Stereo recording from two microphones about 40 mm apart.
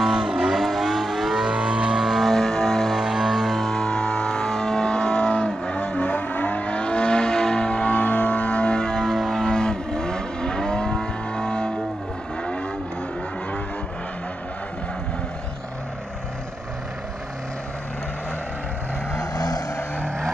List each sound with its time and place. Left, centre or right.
0.1 s vehicle: centre
1.5 s vehicle: right
2.0 s music: centre
2.2 s music: centre
2.9 s music: centre
3.6 s vehicle: centre
7.9 s music: left; by 9.1 s centre
9.1 s music: centre
9.4 s vehicle: centre